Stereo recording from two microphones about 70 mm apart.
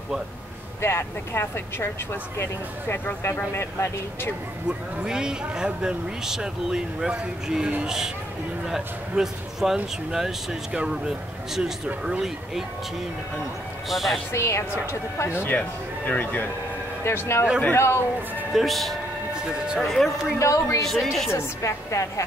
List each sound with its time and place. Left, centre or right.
0.7 s speech: left
4.6 s speech: centre
13.8 s speech: centre
14.3 s a woman's voice: left
16.1 s speech: left
17.0 s speech: left
18.5 s speech: centre
19.3 s speech: centre
19.8 s speech: centre
20.3 s a woman's voice: left
20.8 s speech: centre
21.3 s a woman's voice: left